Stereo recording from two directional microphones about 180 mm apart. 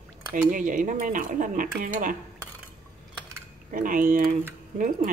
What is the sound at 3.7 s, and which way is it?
Speech, 50° right (ahead or behind).